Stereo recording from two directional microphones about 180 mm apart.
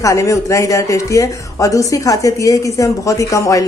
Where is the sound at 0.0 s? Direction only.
15° left (ahead or behind).